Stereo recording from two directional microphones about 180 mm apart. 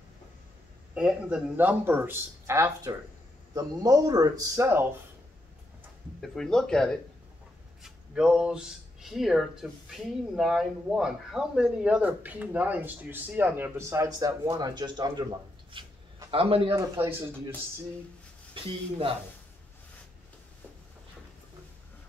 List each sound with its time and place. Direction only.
0.9 s speech: 5° right (ahead or behind)
6.2 s a man's voice: 5° left (ahead or behind); by 16.7 s 30° right (ahead or behind)
16.7 s speech: 20° right (ahead or behind)
18.5 s speech: 30° right (ahead or behind)